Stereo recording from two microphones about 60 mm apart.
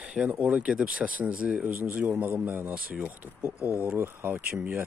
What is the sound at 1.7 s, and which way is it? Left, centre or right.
Speech, right.